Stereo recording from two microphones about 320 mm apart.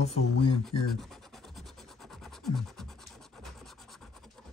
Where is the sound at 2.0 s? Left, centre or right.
Centre.